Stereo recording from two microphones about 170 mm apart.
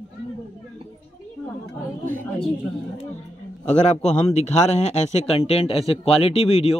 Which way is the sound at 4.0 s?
40° left (ahead or behind).